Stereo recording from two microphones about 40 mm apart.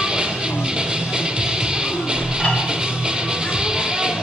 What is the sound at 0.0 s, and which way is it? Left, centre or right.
Music, right.